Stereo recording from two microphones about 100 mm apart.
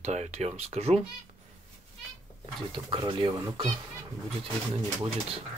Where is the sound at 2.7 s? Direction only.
55° right (ahead or behind).